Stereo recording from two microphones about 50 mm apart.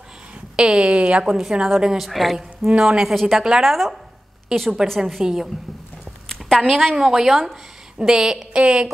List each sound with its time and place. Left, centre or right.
0.6 s a woman's voice: centre
1.2 s a woman's voice: centre
2.0 s a woman's voice: centre
6.2 s a sound: centre
6.9 s a woman's voice: centre